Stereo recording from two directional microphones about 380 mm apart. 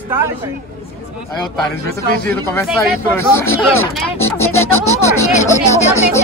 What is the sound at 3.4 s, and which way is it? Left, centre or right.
Speech, left.